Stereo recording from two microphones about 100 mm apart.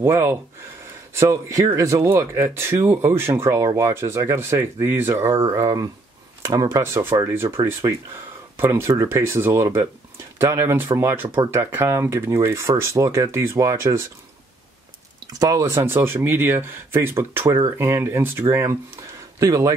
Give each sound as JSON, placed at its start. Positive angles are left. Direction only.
{"t": 0.0, "sound": "speech", "side_deg": -25}
{"t": 15.3, "sound": "speech", "side_deg": -35}